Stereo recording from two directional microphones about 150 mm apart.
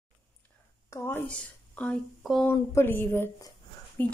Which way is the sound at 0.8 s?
15° left (ahead or behind).